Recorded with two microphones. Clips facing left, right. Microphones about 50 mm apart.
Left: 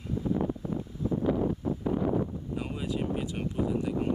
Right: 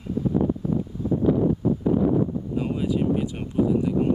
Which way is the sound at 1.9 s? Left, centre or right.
Centre.